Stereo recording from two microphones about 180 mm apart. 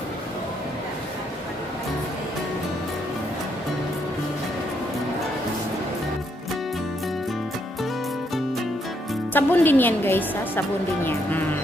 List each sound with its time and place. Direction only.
9.3 s a woman's voice: 10° left (ahead or behind)